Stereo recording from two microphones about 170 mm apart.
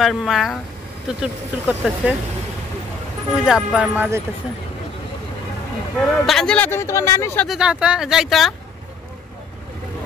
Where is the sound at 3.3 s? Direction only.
5° right (ahead or behind).